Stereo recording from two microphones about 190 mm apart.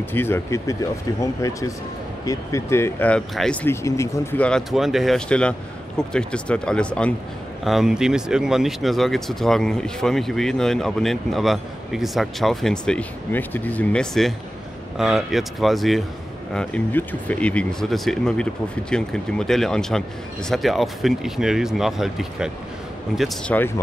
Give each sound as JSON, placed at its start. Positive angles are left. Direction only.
{"t": 0.1, "sound": "speech", "side_deg": 10}
{"t": 3.8, "sound": "speech", "side_deg": 15}